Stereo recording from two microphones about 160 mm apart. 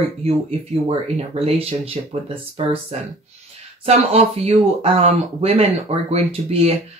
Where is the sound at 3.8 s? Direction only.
40° right (ahead or behind).